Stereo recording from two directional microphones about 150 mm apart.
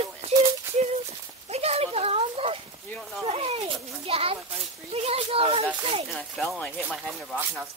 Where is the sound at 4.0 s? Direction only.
40° right (ahead or behind).